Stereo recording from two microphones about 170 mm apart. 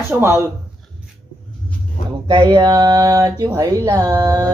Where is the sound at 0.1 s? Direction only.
15° right (ahead or behind).